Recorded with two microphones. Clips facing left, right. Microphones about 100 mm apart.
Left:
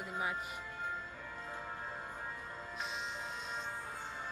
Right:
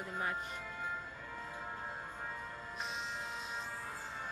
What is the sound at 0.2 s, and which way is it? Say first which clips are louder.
Speech: even; 10° left (ahead or behind).